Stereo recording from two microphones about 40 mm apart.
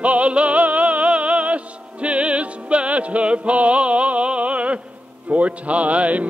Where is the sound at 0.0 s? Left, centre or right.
Right.